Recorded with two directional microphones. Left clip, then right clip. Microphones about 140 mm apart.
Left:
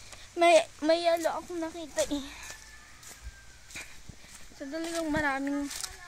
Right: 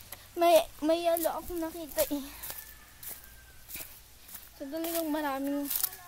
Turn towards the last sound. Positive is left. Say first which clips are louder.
# left 2 dB
turn(degrees=5)  # may be behind; listen again after turning